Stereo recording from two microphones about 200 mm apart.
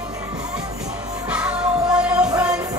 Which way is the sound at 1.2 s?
5° right (ahead or behind).